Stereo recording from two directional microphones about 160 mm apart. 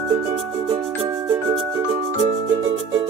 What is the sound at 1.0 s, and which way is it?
Music, 30° right (ahead or behind).